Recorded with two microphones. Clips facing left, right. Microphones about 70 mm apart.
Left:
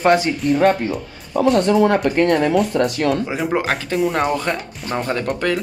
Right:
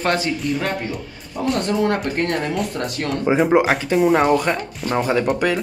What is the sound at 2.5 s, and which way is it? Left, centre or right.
Speech, centre.